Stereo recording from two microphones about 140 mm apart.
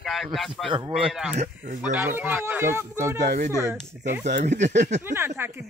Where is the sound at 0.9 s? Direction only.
5° right (ahead or behind).